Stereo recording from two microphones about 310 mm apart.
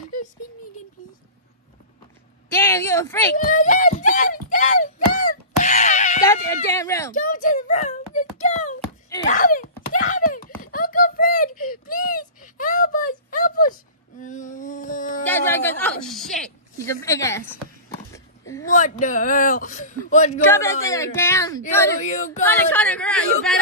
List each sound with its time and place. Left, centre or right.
2.5 s a woman's voice: centre
3.4 s speech: left
4.8 s a sound: left
6.2 s speech: centre
7.2 s a sound: left
15.2 s a woman's voice: centre
17.8 s a sound: centre
18.7 s speech: left
20.4 s speech: centre